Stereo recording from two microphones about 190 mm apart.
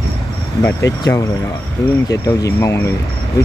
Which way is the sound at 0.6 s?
15° left (ahead or behind).